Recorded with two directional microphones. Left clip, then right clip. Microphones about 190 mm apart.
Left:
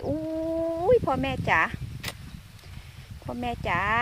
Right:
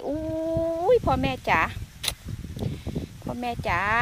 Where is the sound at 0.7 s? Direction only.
15° right (ahead or behind).